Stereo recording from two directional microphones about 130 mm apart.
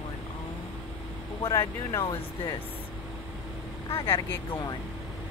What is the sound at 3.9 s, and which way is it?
Speech, 20° left (ahead or behind).